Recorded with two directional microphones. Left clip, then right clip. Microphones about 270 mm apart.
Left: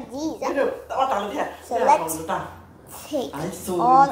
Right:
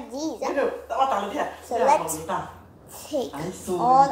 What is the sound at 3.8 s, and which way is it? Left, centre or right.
Speech, centre.